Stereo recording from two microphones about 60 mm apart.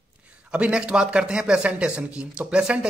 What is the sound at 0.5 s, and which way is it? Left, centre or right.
Speech, centre.